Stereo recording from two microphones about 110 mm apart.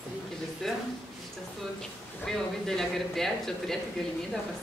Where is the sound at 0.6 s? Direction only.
Centre (ahead or behind).